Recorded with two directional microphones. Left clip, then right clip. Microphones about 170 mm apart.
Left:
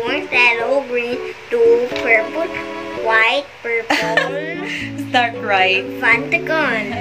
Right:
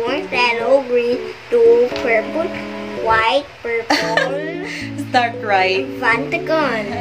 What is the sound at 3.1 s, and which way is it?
Music, 20° right (ahead or behind).